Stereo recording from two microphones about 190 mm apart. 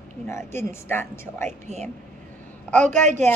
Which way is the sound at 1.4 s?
35° right (ahead or behind).